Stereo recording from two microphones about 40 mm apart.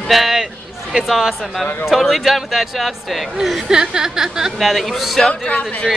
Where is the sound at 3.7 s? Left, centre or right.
Centre.